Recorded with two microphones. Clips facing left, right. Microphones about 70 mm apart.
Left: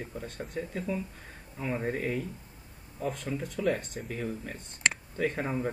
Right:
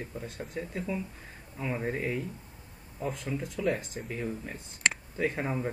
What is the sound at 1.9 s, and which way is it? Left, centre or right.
Speech, centre.